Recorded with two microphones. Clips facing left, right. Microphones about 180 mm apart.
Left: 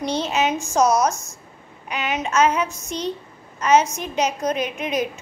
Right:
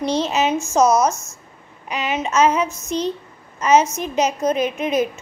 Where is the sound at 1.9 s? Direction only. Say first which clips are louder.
Right 2 dB; centre (ahead or behind).